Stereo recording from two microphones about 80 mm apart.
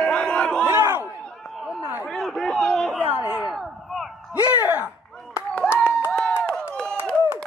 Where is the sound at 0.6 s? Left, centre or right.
Right.